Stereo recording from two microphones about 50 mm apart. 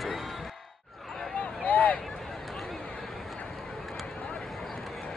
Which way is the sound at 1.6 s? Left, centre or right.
Left.